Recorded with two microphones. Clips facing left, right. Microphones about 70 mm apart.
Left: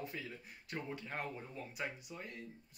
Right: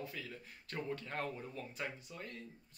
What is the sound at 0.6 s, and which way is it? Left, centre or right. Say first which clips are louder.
Speech: right 2 dB; centre.